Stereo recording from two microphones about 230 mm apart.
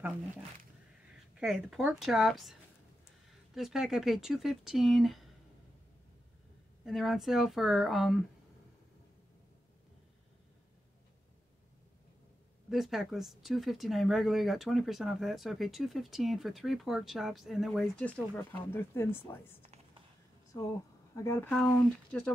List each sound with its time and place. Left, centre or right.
1.3 s speech: centre
3.5 s speech: centre
6.8 s speech: centre
12.6 s speech: centre
21.1 s speech: centre